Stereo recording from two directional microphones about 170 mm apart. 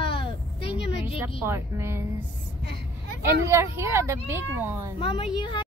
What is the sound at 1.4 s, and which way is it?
Speech, 15° right (ahead or behind).